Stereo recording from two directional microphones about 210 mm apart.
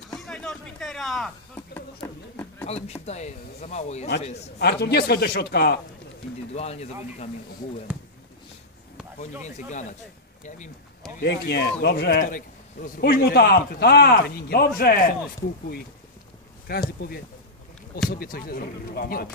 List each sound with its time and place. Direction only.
0.1 s a sound: 5° left (ahead or behind)
2.6 s speech: 30° left (ahead or behind)
4.6 s a man's voice: 50° left (ahead or behind)
6.5 s speech: 30° left (ahead or behind)
7.9 s speech: 5° right (ahead or behind)
9.4 s speech: 35° left (ahead or behind)
11.2 s a man's voice: 50° left (ahead or behind)
16.7 s a man's voice: 45° left (ahead or behind)
18.1 s a man's voice: 45° left (ahead or behind)